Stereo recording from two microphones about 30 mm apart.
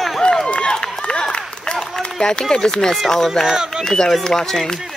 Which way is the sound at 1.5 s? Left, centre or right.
Left.